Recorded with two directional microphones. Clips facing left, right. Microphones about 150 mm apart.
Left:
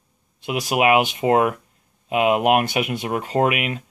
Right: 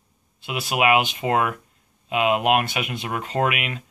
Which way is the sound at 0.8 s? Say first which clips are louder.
Left 2 dB; 35° left (ahead or behind).